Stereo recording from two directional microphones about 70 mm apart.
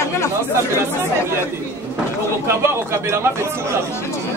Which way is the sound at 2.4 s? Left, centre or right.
Right.